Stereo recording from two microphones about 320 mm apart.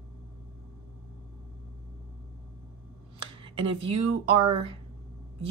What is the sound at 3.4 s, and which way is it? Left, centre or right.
A woman's voice, centre.